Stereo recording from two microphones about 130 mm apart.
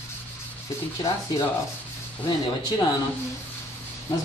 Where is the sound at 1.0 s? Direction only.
30° left (ahead or behind).